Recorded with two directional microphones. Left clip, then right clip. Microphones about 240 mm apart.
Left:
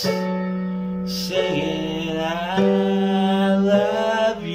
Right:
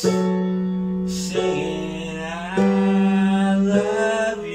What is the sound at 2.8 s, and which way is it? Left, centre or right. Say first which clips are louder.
Mantra: left 1 dB; left.